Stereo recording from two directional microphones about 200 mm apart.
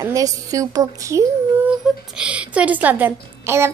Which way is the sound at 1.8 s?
Centre (ahead or behind).